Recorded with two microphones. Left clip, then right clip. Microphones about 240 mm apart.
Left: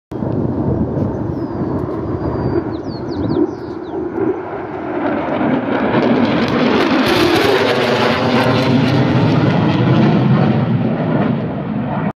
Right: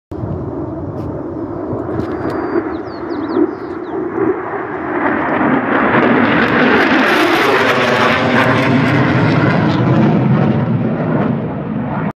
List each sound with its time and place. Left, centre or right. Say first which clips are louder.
5.0 s vehicle: right 3 dB; left
7.5 s vehicle: right 2 dB; left
9.7 s a sound: right 1 dB; centre